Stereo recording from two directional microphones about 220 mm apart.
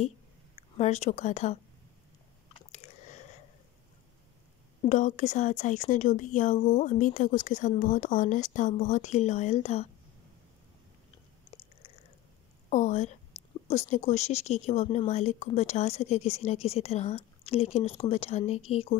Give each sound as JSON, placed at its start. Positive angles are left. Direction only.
{"t": 0.7, "sound": "speech", "side_deg": 30}
{"t": 2.7, "sound": "chewing", "side_deg": 30}
{"t": 4.8, "sound": "speech", "side_deg": 35}
{"t": 12.6, "sound": "a woman's voice", "side_deg": 35}
{"t": 13.4, "sound": "a sound", "side_deg": 30}
{"t": 13.7, "sound": "a woman's voice", "side_deg": 30}